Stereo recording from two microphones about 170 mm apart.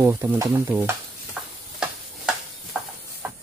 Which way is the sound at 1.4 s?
5° right (ahead or behind).